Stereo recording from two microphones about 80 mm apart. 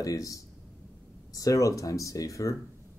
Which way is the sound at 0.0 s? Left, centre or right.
Left.